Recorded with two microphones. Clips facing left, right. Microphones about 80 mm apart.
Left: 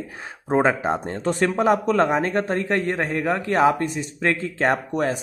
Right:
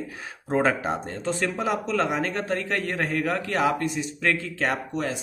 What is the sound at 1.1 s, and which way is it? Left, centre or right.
Speech, left.